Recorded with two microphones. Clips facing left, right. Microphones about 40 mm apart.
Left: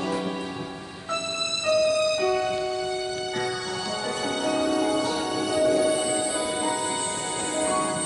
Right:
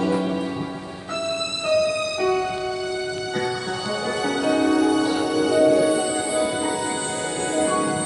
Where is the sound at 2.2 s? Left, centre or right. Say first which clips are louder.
Right 2 dB; centre.